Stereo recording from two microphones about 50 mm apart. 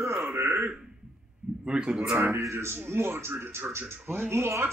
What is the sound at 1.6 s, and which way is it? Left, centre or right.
Speech, centre.